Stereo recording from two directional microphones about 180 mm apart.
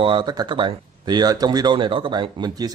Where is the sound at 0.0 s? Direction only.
25° right (ahead or behind).